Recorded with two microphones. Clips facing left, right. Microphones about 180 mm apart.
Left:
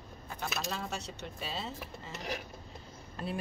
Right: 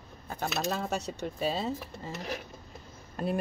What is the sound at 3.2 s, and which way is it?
Speech, 45° right (ahead or behind).